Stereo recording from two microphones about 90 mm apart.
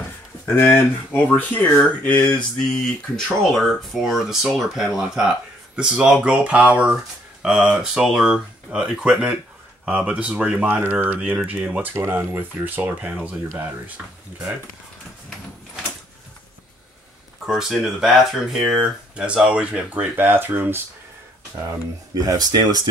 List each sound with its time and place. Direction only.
0.5 s speech: 20° left (ahead or behind)
2.7 s speech: 5° left (ahead or behind); by 13.1 s 20° right (ahead or behind)
17.5 s speech: 5° right (ahead or behind); by 20.8 s 20° right (ahead or behind)
21.6 s speech: 45° right (ahead or behind)